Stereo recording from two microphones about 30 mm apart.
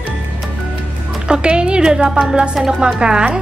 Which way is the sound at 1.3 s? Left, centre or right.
Right.